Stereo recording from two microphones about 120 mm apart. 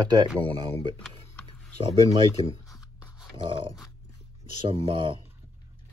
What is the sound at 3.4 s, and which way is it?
Speech, 45° right (ahead or behind).